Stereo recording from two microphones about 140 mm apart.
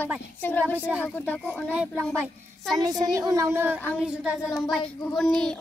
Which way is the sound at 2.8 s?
25° right (ahead or behind).